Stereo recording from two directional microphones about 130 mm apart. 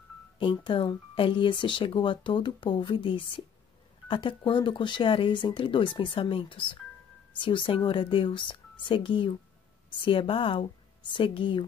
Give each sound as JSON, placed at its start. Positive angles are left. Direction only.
{"t": 0.4, "sound": "a woman's voice", "side_deg": 40}